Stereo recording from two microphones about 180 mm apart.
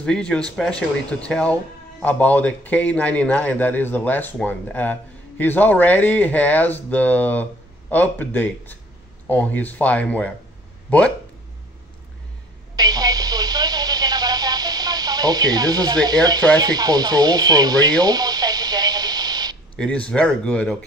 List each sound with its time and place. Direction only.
0.0 s speech: 5° left (ahead or behind)
12.7 s radio: 20° right (ahead or behind)
19.8 s speech: 5° left (ahead or behind)